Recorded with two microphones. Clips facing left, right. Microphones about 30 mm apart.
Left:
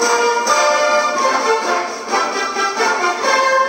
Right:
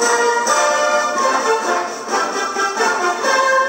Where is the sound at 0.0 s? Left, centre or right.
Left.